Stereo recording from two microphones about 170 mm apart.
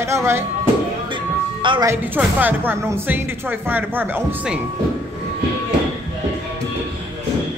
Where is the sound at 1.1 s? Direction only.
30° right (ahead or behind).